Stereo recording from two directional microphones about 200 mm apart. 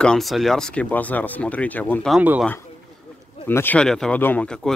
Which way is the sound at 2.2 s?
10° right (ahead or behind).